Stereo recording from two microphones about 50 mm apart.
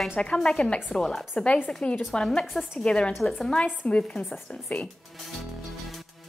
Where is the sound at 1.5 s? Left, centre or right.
Left.